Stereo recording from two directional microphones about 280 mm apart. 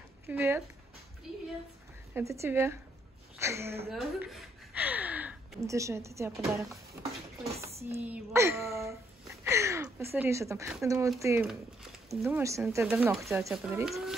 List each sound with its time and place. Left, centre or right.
0.3 s speech: centre
2.1 s a woman's voice: centre
8.0 s speech: centre